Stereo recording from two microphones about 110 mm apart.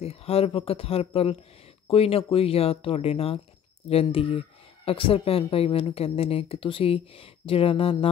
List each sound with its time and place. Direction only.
0.0 s speech: 65° left (ahead or behind)